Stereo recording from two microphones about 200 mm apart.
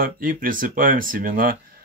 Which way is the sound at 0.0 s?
45° right (ahead or behind).